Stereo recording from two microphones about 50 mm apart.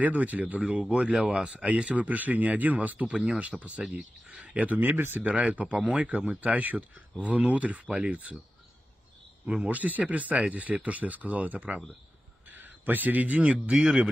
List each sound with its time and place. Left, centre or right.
0.0 s speech: right
3.1 s speech: right
4.7 s speech: right
9.7 s speech: right
12.4 s speech: right